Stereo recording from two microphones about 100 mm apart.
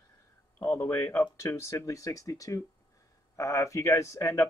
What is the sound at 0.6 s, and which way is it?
Speech, 25° left (ahead or behind).